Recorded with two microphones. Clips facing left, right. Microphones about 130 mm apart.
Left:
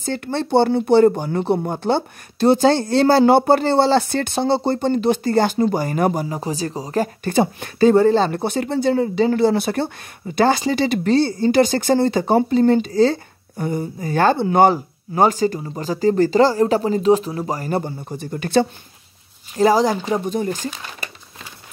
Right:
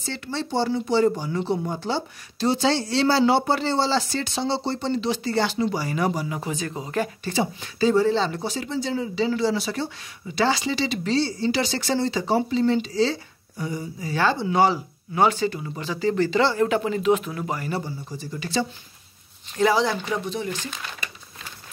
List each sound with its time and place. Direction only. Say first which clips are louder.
0.0 s speech: left 7 dB; 50° left (ahead or behind)
6.2 s speech: left 4 dB; 35° left (ahead or behind)
7.2 s speech: left 7 dB; 55° left (ahead or behind)
19.5 s speech: left 5 dB; 40° left (ahead or behind)